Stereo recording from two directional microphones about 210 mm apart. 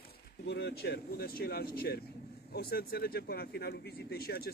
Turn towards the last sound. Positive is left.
turn(degrees=45)  # may be behind; listen again after turning